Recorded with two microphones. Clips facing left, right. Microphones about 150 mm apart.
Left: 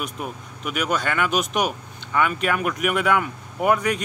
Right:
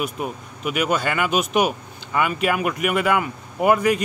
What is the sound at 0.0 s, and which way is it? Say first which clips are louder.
Speech: right 4 dB; 5° right (ahead or behind).